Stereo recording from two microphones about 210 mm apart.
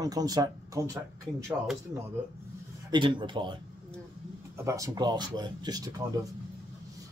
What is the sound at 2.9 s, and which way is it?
Speech, 25° right (ahead or behind).